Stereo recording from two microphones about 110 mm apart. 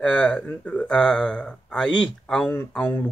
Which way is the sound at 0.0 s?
10° left (ahead or behind).